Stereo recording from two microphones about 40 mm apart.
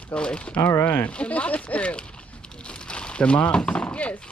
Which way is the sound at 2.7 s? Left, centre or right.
Left.